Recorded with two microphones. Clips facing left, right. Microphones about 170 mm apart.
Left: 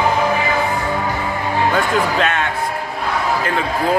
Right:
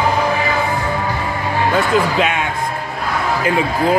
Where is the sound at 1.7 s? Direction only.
10° right (ahead or behind).